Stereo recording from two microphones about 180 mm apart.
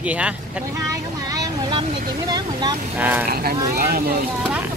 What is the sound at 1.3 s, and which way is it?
Vehicle, 25° right (ahead or behind).